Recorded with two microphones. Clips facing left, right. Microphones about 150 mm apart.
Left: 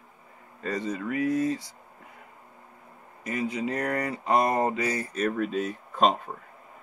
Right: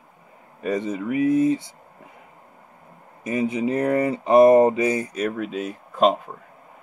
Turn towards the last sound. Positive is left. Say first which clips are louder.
# right 4 dB
turn(degrees=-5)  # may be behind; listen again after turning